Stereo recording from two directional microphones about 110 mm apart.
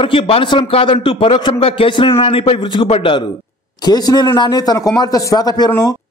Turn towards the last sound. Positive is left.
turn(degrees=40)  # may be behind; listen again after turning